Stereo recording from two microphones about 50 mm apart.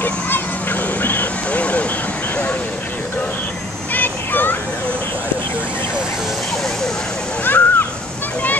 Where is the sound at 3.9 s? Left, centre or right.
Left.